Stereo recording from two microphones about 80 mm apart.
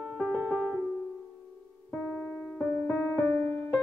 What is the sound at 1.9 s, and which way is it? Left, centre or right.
Music, centre.